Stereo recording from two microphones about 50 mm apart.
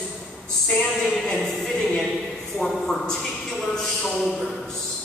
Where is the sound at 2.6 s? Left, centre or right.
Centre.